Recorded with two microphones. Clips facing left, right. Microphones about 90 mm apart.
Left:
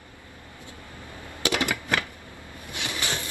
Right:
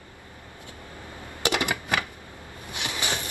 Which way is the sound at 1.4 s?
20° right (ahead or behind).